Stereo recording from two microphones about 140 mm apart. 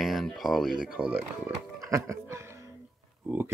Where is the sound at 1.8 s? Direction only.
20° right (ahead or behind).